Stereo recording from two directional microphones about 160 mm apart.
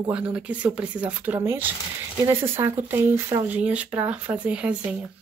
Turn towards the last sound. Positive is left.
turn(degrees=-10)  # may be behind; listen again after turning